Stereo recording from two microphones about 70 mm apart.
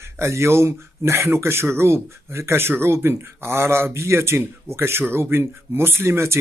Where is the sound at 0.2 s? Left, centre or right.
Right.